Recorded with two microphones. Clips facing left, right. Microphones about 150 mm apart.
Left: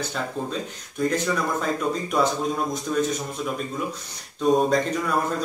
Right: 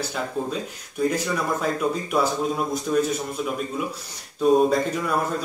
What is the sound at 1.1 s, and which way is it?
Speech, 10° right (ahead or behind).